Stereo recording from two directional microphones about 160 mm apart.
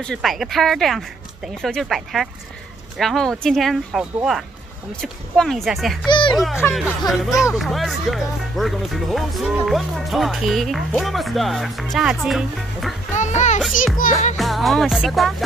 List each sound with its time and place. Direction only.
0.0 s speech: 5° left (ahead or behind)
6.0 s a child's voice: 30° left (ahead or behind)
6.3 s speech: centre (ahead or behind)
13.1 s children playing: 50° left (ahead or behind)
13.9 s music: 60° left (ahead or behind)
14.3 s music: centre (ahead or behind)